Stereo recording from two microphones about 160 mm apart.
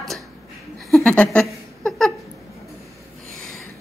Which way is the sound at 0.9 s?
5° left (ahead or behind).